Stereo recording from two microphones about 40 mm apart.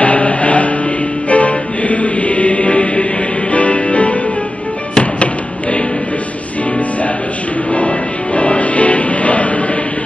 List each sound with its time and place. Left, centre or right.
0.0 s a sound: left
1.3 s music: left
8.4 s music: left